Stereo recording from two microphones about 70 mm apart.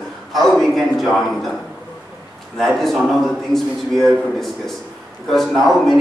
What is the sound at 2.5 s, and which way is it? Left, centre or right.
A man's voice, centre.